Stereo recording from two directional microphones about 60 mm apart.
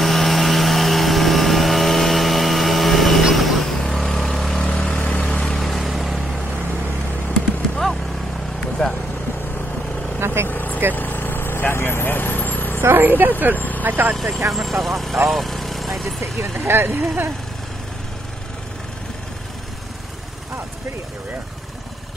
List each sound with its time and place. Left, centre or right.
0.0 s vehicle: centre
4.6 s vehicle: centre
5.4 s vehicle: centre
8.8 s vehicle: centre
10.2 s vehicle: right
10.5 s vehicle: left
12.8 s a sound: right
13.6 s vehicle: left
13.8 s speech: right
14.1 s speech: centre
15.2 s vehicle: centre
16.3 s speech: right